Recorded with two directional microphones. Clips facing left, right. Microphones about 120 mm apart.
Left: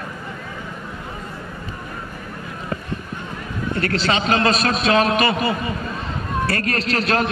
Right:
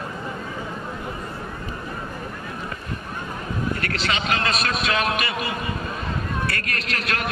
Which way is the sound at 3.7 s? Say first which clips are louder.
Left 6 dB; 30° left (ahead or behind).